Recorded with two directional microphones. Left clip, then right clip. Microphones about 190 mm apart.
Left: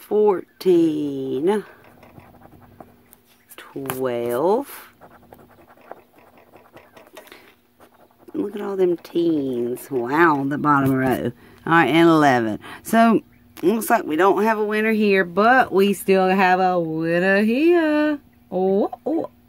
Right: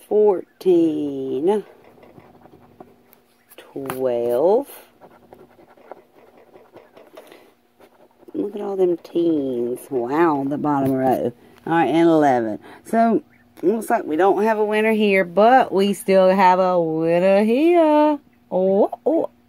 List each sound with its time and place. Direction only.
0.1 s speech: 20° left (ahead or behind)
3.5 s speech: 15° left (ahead or behind)
8.3 s speech: 15° left (ahead or behind)
14.4 s speech: centre (ahead or behind)